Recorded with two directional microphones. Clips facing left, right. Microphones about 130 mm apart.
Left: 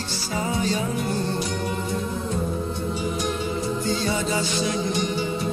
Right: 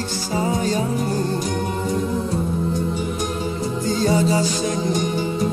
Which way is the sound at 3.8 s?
40° right (ahead or behind).